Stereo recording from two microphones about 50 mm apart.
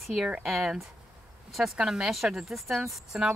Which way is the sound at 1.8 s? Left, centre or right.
Centre.